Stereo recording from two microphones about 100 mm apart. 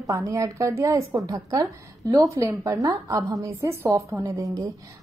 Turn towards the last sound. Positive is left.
turn(degrees=-35)  # may be behind; listen again after turning